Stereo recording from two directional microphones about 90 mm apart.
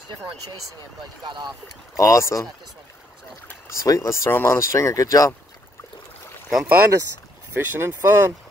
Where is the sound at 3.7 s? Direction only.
35° left (ahead or behind).